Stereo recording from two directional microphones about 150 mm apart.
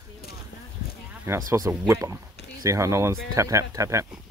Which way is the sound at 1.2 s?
20° right (ahead or behind).